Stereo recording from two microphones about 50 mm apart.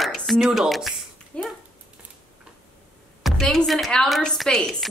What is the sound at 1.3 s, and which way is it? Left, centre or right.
Speech, left.